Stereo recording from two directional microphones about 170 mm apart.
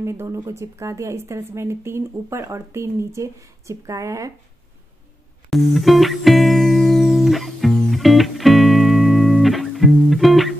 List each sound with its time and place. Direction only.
0.0 s speech: 15° right (ahead or behind)
5.5 s music: centre (ahead or behind)